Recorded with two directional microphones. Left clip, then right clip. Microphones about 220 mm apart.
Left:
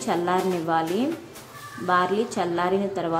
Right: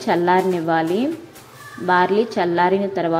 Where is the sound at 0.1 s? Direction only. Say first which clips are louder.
Right 7 dB; 5° right (ahead or behind).